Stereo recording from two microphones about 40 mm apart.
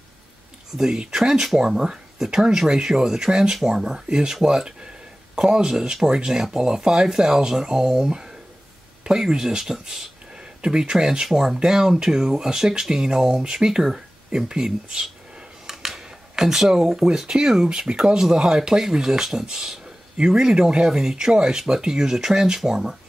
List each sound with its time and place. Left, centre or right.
0.7 s speech: centre